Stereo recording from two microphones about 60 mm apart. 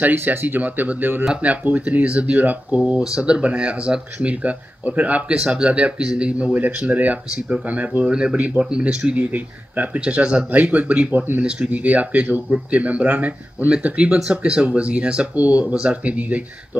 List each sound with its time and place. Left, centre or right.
0.0 s speech: right
5.3 s speech: centre
8.1 s speech: centre; by 11.4 s right
11.4 s speech: centre